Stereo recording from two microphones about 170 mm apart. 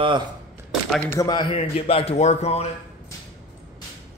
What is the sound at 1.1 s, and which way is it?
A man's voice, 25° left (ahead or behind).